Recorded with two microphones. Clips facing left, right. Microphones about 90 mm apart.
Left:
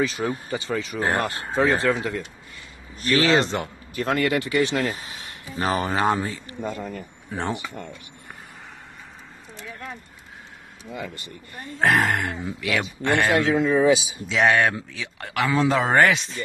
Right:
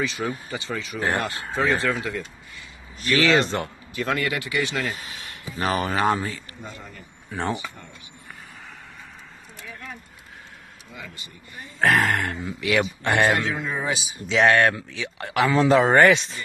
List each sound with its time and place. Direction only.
0.0 s speech: 35° left (ahead or behind)
3.4 s speech: 15° left (ahead or behind)
3.9 s speech: 40° left (ahead or behind); by 6.1 s 20° left (ahead or behind)
6.6 s speech: 50° left (ahead or behind)
10.9 s speech: 55° left (ahead or behind)
11.8 s speech: 15° left (ahead or behind)
12.5 s speech: 5° right (ahead or behind)
13.5 s speech: 90° left
14.1 s speech: centre (ahead or behind)